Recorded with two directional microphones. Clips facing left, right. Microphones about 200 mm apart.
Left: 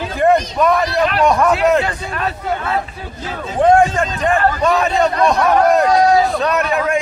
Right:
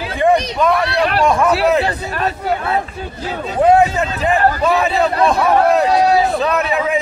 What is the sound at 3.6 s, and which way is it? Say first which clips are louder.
A man's voice: even; 5° right (ahead or behind).